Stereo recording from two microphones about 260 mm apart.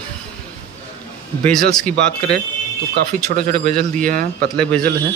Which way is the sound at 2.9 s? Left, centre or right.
Right.